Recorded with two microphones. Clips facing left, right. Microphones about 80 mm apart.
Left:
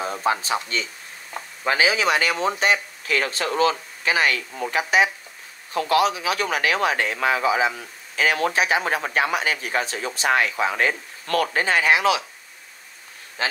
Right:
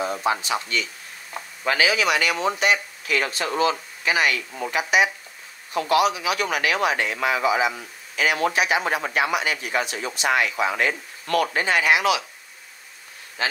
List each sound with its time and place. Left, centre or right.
0.2 s speech: left
1.3 s a sound: centre
1.7 s speech: left
13.4 s speech: left